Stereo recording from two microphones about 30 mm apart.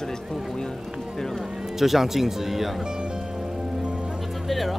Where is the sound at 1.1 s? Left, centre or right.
Centre.